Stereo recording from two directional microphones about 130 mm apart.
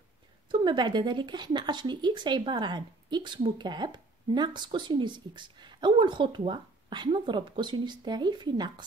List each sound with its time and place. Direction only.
0.5 s speech: 35° right (ahead or behind)